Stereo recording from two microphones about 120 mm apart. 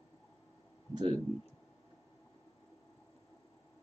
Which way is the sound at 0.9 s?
50° right (ahead or behind).